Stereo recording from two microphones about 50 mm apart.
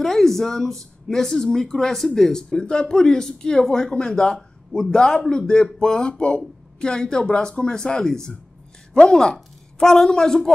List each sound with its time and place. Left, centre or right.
0.0 s a woman's voice: centre